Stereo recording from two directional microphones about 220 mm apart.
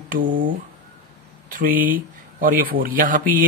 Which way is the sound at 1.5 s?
40° right (ahead or behind).